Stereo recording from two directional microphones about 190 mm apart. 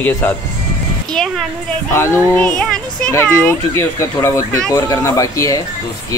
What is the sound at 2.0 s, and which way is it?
Speech, 5° left (ahead or behind).